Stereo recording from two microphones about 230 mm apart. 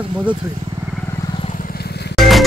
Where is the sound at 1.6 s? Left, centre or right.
Left.